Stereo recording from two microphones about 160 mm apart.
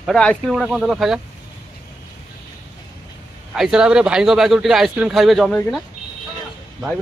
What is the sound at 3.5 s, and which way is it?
A man's voice, 5° right (ahead or behind).